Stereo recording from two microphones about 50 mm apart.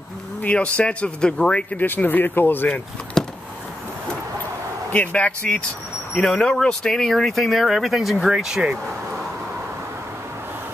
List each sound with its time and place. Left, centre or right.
0.4 s speech: left
1.8 s speech: left
3.2 s a sound: centre
4.9 s speech: left
5.4 s speech: centre